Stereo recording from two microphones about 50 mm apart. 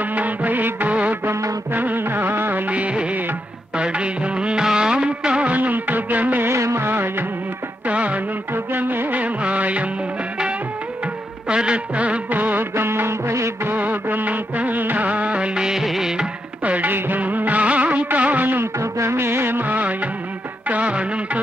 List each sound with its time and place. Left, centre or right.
0.0 s music: right
2.7 s music of bollywood: right
6.5 s music: right
6.9 s music: right
7.8 s music: right
8.7 s music of bollywood: right
11.4 s music: centre; by 12.6 s right
12.7 s music of bollywood: right
13.7 s music: right; by 16.3 s centre
16.6 s music: right
16.9 s music of bollywood: right
18.6 s music: right
20.6 s music of bollywood: right